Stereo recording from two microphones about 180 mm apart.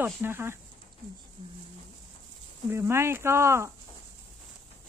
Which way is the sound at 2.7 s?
15° right (ahead or behind).